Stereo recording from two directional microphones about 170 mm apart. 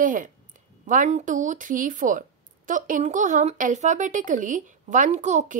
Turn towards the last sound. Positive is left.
turn(degrees=-45)  # may be behind; listen again after turning